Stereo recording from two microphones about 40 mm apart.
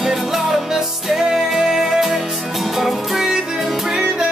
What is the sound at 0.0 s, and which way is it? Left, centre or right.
Music, centre.